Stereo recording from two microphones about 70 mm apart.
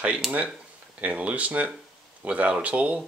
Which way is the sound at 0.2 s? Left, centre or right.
Centre.